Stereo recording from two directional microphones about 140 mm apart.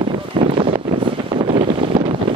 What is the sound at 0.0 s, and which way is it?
Wind noise, 45° right (ahead or behind).